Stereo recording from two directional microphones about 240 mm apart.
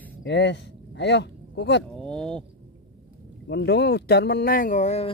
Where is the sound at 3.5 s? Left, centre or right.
Left.